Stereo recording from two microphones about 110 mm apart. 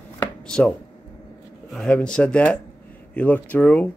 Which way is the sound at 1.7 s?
5° left (ahead or behind).